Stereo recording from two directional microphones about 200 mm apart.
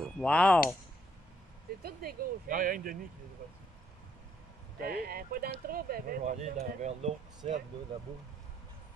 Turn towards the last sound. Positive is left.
turn(degrees=-30)  # may be behind; listen again after turning